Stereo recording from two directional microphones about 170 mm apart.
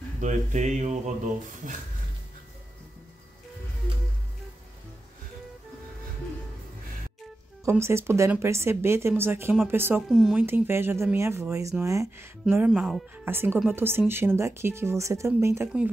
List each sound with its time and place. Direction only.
0.2 s speech: 45° right (ahead or behind)
7.8 s speech: 15° right (ahead or behind)